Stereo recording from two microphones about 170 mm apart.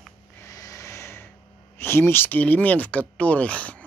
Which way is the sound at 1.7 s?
15° left (ahead or behind).